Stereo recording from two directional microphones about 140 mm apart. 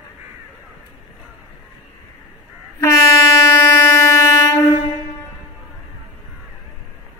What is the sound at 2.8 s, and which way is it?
Train, 20° left (ahead or behind).